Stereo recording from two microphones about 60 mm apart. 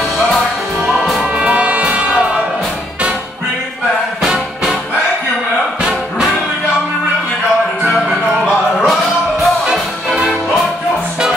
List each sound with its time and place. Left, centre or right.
0.9 s music: centre
1.3 s music: centre
8.8 s music: centre